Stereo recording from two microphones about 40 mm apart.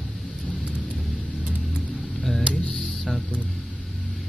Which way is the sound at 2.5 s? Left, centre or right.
Centre.